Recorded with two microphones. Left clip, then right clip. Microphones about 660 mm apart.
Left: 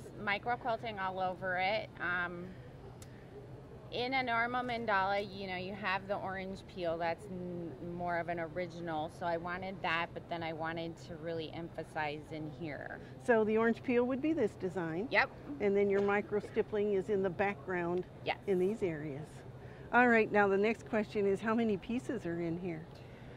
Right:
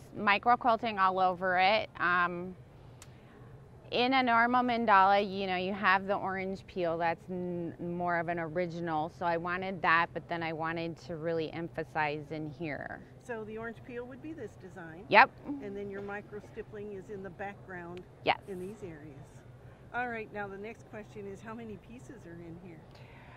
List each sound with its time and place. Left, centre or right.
0.2 s speech: right
3.9 s speech: right
13.3 s speech: left
15.0 s speech: right
15.6 s speech: left
17.9 s a woman's voice: right
18.5 s a woman's voice: left
19.9 s speech: left